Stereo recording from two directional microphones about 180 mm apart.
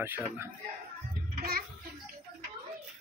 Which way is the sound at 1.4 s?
55° right (ahead or behind).